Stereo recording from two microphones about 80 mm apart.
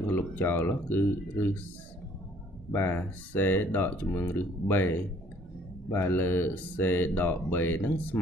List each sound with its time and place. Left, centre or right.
0.4 s speech: left
2.7 s speech: left